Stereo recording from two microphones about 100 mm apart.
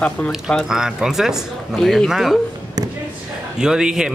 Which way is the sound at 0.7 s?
5° right (ahead or behind).